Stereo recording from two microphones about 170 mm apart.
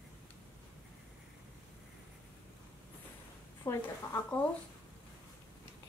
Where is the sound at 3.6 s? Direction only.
15° left (ahead or behind).